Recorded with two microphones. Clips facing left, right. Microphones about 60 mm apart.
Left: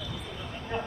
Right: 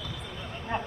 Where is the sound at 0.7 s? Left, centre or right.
Right.